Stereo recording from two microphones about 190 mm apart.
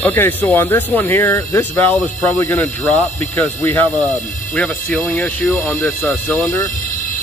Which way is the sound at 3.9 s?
40° left (ahead or behind).